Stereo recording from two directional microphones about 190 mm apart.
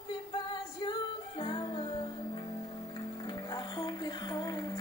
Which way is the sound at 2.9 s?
20° left (ahead or behind).